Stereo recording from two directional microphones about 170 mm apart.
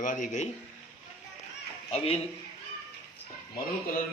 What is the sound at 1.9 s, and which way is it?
Speech, 35° left (ahead or behind).